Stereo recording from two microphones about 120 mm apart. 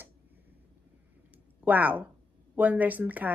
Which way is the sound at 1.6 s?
15° right (ahead or behind).